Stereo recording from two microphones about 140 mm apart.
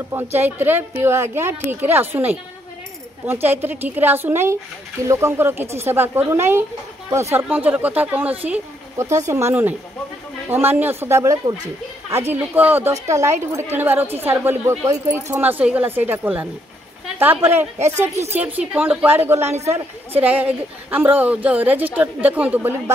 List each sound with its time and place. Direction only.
0.1 s a woman's voice: 15° right (ahead or behind)
17.5 s a woman's voice: 15° right (ahead or behind)